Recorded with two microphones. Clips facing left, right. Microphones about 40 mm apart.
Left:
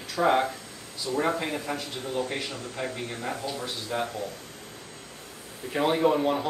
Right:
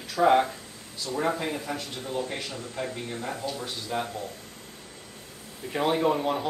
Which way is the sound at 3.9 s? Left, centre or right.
Centre.